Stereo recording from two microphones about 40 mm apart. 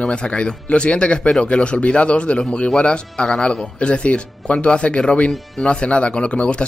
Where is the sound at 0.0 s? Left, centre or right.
Left.